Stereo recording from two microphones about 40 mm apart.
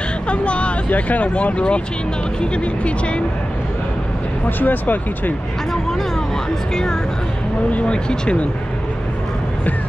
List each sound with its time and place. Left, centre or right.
0.3 s vehicle: left
0.8 s speech: left
4.5 s speech: left
6.7 s speech: centre